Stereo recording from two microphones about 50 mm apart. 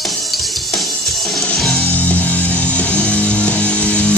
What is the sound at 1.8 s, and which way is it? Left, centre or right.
Music, left.